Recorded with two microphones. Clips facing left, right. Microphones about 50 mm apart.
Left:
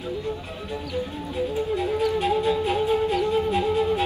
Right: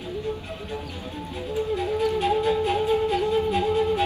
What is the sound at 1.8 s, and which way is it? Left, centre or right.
Flute, left.